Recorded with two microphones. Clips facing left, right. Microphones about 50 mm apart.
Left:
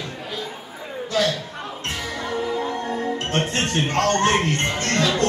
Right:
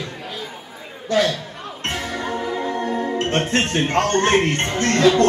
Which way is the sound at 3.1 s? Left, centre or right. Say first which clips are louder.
Right 4 dB; right.